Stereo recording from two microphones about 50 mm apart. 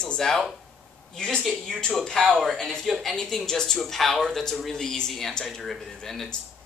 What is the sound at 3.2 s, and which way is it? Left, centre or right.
Speech, centre.